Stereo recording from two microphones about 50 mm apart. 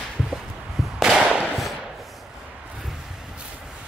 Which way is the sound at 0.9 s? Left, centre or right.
Centre.